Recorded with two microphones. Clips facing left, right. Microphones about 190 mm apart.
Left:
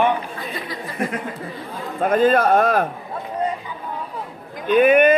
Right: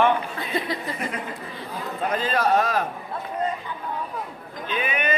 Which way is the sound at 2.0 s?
50° left (ahead or behind).